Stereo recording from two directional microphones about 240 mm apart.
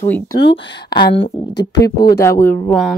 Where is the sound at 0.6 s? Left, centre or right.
Left.